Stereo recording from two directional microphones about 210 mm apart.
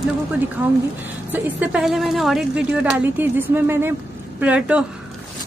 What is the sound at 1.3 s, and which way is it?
Speech, 5° right (ahead or behind).